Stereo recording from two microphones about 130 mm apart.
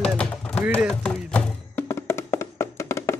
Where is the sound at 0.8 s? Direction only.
5° left (ahead or behind).